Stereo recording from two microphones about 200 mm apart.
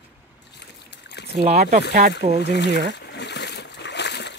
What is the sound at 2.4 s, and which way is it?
Speech, 60° left (ahead or behind).